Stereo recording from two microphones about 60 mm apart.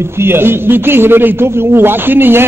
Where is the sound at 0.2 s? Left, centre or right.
Right.